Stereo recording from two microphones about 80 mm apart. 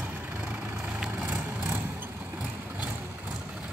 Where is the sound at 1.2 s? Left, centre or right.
Right.